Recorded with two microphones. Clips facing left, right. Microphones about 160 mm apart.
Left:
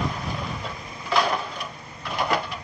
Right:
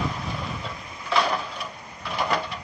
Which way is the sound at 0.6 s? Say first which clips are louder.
Left 1 dB; centre (ahead or behind).